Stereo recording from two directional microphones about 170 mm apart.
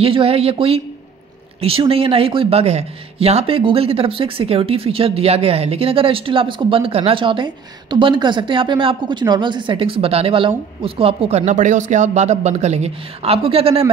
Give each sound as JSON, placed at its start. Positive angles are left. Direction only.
{"t": 0.0, "sound": "speech", "side_deg": -35}